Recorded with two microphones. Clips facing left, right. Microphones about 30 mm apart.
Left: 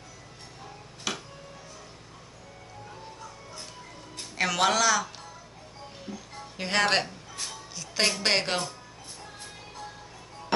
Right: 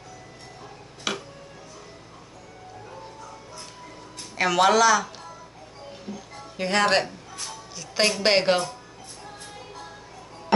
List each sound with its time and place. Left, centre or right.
1.1 s music: right
4.4 s speech: centre
6.0 s music: centre
7.7 s a woman's voice: centre